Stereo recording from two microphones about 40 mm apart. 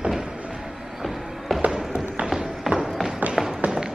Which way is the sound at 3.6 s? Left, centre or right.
Right.